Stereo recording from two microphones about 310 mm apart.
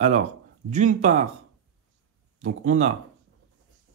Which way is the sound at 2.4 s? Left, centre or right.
Right.